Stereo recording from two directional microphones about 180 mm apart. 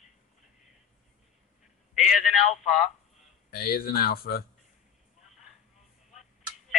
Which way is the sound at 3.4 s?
55° left (ahead or behind).